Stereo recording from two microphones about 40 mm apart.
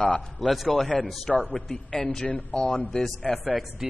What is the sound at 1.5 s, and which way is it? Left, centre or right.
Speech, left.